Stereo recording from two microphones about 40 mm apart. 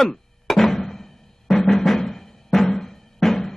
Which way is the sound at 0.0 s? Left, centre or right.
Centre.